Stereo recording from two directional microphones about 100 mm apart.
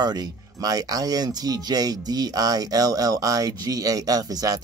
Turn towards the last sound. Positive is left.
turn(degrees=-40)  # may be behind; listen again after turning